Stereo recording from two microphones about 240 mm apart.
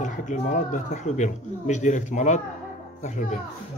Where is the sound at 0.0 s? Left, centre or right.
Left.